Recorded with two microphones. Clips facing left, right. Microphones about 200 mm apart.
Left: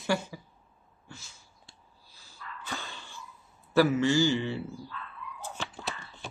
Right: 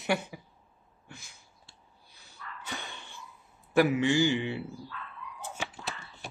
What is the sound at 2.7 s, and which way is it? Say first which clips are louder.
Dog: left 1 dB; 20° right (ahead or behind).